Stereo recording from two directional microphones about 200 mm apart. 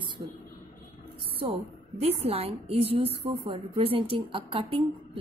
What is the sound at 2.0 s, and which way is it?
A woman's voice, 30° right (ahead or behind).